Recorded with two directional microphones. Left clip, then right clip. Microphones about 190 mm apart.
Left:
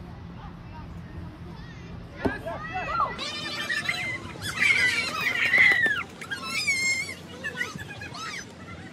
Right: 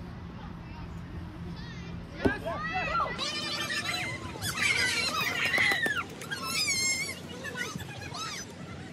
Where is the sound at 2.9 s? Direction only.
30° left (ahead or behind).